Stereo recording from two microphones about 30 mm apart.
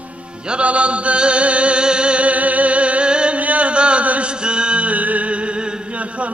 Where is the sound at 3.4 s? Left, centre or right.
Right.